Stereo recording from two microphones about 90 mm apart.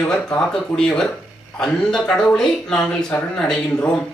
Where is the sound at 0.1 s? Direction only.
5° left (ahead or behind).